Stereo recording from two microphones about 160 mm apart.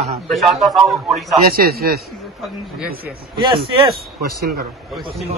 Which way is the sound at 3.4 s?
30° right (ahead or behind).